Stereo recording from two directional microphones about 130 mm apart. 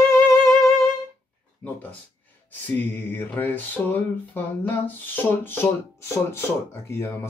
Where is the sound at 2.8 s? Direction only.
15° left (ahead or behind).